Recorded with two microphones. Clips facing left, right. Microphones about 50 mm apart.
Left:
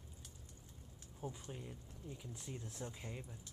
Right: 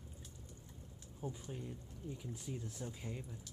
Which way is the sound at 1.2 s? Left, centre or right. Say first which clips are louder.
Right 2 dB; left.